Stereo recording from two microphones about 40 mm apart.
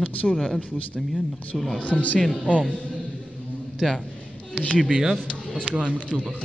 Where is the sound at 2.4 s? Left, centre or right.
Left.